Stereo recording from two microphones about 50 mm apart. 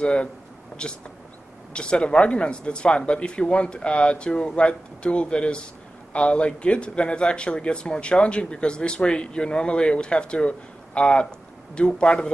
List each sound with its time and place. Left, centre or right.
0.0 s speech: left